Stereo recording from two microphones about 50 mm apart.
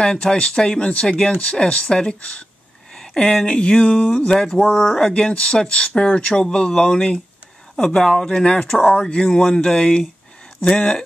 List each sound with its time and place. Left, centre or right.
0.0 s speech: centre
2.9 s a sound: centre
3.4 s speech: left